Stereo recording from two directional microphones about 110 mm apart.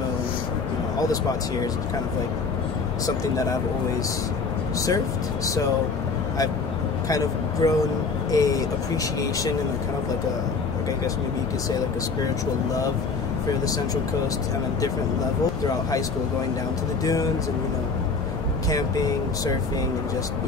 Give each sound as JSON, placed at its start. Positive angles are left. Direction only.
{"t": 4.8, "sound": "speech", "side_deg": 30}
{"t": 7.1, "sound": "speech", "side_deg": 30}
{"t": 17.0, "sound": "speech", "side_deg": 30}
{"t": 18.7, "sound": "speech", "side_deg": 35}